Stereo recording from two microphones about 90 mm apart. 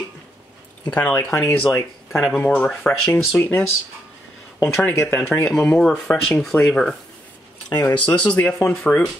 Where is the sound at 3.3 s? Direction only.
20° left (ahead or behind).